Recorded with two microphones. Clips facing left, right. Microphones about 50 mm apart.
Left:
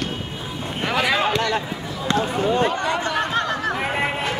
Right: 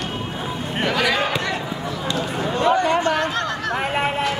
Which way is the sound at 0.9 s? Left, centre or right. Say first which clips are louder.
Left 1 dB; left.